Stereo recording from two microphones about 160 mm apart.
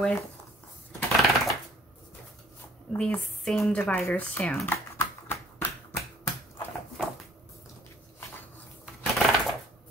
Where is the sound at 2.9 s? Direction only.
5° left (ahead or behind).